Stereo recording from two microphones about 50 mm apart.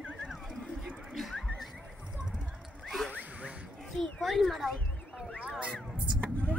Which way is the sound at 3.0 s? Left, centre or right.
Right.